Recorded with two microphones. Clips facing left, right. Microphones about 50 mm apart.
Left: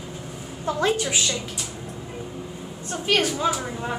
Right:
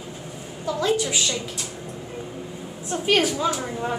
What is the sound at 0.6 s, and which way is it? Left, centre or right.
Speech, left.